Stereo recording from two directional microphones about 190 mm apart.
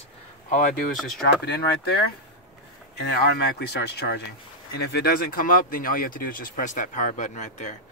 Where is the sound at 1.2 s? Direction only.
55° left (ahead or behind).